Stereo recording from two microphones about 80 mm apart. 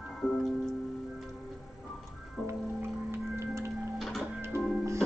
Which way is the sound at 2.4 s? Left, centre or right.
Right.